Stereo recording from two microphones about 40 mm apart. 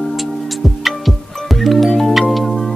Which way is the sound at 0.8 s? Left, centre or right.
Centre.